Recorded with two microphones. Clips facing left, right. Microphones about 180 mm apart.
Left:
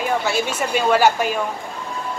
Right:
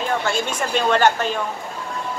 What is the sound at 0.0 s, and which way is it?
Speech, 10° left (ahead or behind).